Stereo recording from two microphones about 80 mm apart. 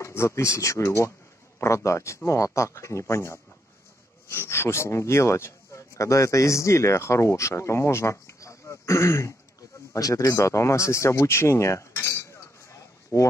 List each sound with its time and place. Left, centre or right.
0.0 s speech: left
10.2 s cutlery: left
13.1 s speech: left